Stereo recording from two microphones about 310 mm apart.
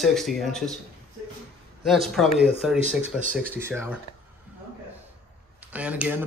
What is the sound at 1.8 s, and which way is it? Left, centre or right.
Speech, centre.